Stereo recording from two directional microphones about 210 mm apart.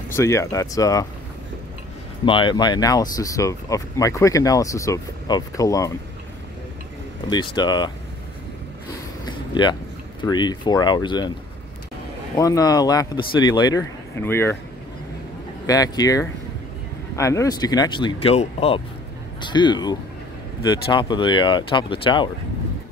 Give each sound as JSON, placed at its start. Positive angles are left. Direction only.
{"t": 0.1, "sound": "speech", "side_deg": 15}
{"t": 2.2, "sound": "speech", "side_deg": 25}
{"t": 7.2, "sound": "speech", "side_deg": 20}
{"t": 9.2, "sound": "a sound", "side_deg": 20}
{"t": 10.2, "sound": "speech", "side_deg": 20}
{"t": 12.4, "sound": "speech", "side_deg": 15}
{"t": 15.6, "sound": "speech", "side_deg": 15}